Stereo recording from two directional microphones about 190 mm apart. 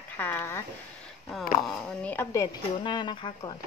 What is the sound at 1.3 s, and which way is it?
A woman's voice, centre (ahead or behind).